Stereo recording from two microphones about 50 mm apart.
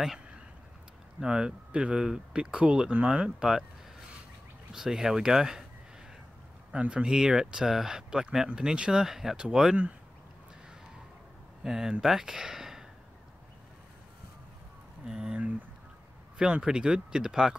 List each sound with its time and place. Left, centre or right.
1.2 s speech: centre
4.7 s speech: centre
6.7 s speech: centre
11.6 s speech: centre
15.0 s speech: centre
16.3 s speech: centre